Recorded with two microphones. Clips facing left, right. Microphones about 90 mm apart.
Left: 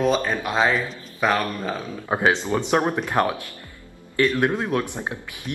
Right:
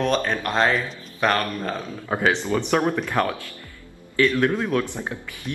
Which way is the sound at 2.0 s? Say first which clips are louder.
Left 1 dB; 20° left (ahead or behind).